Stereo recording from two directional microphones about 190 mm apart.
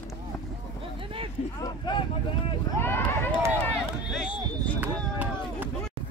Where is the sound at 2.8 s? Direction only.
10° left (ahead or behind).